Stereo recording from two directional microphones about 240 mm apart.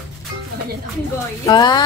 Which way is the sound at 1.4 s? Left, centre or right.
Centre.